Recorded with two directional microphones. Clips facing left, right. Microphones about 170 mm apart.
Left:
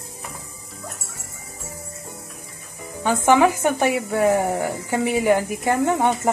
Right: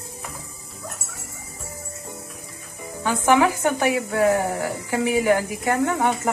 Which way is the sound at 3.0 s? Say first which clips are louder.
Left 2 dB; 20° left (ahead or behind).